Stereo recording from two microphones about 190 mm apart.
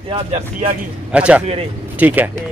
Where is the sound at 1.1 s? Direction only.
5° right (ahead or behind).